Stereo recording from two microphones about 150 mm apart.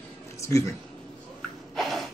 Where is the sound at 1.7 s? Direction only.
Centre (ahead or behind).